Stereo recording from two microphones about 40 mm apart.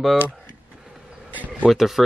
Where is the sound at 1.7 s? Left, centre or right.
Centre.